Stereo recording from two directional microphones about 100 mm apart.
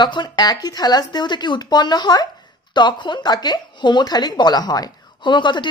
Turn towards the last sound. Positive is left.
turn(degrees=50)  # may be behind; listen again after turning